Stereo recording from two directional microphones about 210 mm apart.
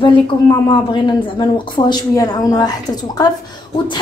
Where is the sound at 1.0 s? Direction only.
20° left (ahead or behind).